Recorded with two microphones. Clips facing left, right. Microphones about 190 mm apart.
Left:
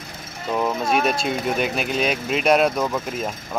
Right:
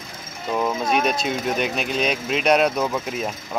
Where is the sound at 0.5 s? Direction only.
Centre (ahead or behind).